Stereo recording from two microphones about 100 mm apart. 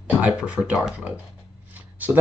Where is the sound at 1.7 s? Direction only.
20° right (ahead or behind).